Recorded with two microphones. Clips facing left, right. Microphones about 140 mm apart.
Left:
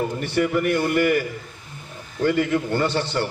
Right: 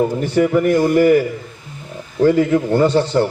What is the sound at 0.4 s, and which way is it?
Speech, 30° right (ahead or behind).